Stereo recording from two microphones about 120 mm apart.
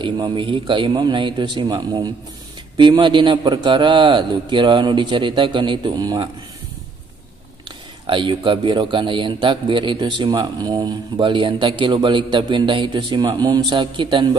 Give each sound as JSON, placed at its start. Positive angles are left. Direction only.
{"t": 0.0, "sound": "a man's voice", "side_deg": -40}
{"t": 7.6, "sound": "speech", "side_deg": -45}